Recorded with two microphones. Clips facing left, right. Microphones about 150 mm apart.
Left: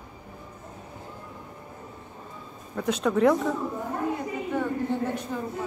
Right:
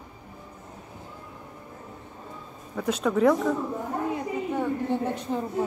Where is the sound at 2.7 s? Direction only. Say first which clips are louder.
Even; centre (ahead or behind).